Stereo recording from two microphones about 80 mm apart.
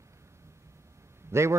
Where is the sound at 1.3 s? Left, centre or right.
Right.